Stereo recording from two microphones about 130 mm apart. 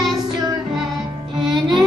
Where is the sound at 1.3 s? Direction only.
35° right (ahead or behind).